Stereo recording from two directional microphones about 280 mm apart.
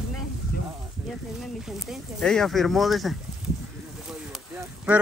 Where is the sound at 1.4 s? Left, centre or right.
Centre.